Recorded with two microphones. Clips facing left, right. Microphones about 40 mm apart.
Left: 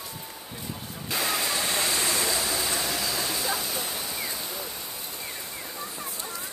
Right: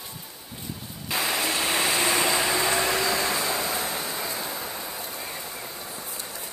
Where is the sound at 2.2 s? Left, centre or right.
Right.